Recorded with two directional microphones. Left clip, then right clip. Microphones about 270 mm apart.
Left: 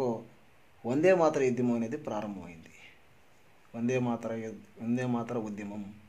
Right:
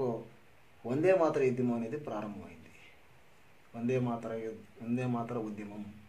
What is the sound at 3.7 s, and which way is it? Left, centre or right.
A man's voice, left.